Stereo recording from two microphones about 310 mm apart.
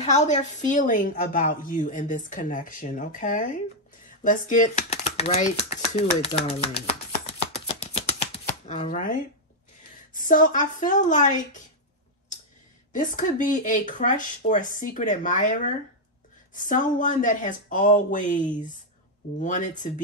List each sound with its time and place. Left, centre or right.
0.0 s a woman's voice: left
4.2 s a sound: left
8.5 s a woman's voice: left
12.9 s a woman's voice: left